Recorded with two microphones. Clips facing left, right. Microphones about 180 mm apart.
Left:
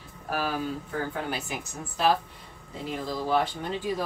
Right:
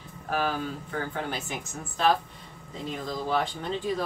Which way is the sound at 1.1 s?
5° left (ahead or behind).